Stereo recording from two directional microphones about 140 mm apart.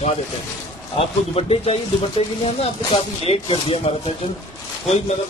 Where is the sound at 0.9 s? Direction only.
45° left (ahead or behind).